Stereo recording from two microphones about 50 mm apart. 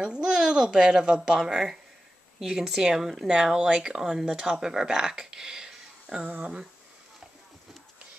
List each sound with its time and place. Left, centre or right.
0.0 s speech: centre